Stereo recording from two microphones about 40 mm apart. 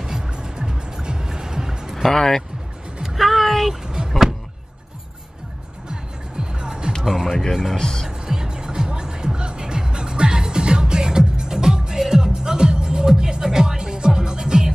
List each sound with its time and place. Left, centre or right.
0.0 s music: centre
2.0 s speech: centre
3.0 s music: centre
5.9 s music: right
7.0 s music: centre
7.7 s speech: centre
8.3 s music: centre